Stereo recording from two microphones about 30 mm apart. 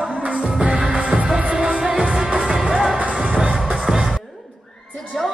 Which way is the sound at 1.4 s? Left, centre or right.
Right.